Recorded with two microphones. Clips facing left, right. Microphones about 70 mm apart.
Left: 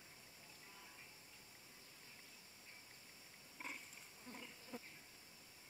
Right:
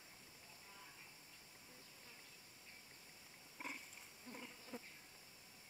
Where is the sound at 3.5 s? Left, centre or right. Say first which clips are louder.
Right 1 dB; centre.